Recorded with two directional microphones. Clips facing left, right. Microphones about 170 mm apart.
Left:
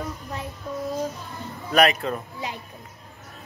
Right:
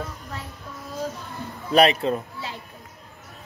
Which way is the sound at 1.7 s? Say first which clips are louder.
Right 2 dB; 30° right (ahead or behind).